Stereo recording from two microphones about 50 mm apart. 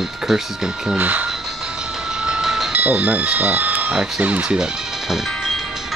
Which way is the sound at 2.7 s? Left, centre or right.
Right.